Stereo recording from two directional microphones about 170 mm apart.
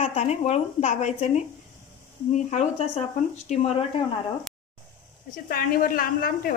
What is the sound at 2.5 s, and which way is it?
Speech, 40° left (ahead or behind).